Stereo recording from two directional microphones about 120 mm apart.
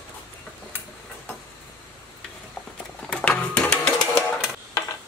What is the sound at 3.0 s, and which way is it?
Sewing machine, 10° left (ahead or behind).